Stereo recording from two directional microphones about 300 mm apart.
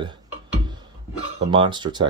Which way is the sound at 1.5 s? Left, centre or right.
Centre.